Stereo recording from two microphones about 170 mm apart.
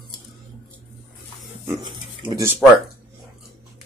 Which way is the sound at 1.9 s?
25° right (ahead or behind).